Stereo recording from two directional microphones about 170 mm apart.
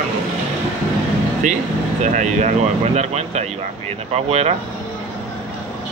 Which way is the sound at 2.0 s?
45° right (ahead or behind).